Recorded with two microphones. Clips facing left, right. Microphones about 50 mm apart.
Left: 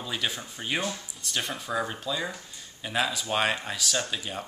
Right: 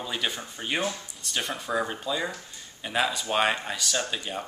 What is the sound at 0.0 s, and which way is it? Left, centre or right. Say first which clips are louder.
Speech: right 1 dB; centre.